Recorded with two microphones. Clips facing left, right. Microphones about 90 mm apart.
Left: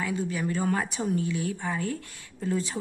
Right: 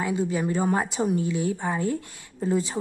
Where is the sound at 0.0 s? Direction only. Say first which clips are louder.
Right 4 dB; 25° right (ahead or behind).